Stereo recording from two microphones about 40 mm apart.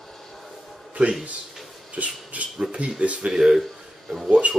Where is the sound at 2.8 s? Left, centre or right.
Right.